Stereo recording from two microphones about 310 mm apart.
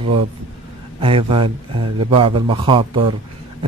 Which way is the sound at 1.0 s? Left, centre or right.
Centre.